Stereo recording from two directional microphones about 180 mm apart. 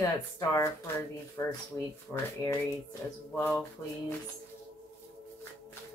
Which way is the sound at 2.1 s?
Centre (ahead or behind).